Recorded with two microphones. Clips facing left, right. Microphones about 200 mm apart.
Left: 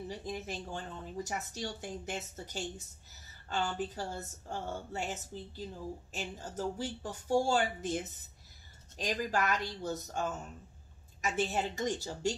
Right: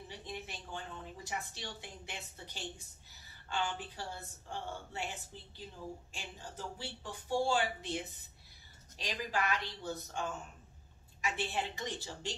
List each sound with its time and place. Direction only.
0.1 s speech: 45° left (ahead or behind)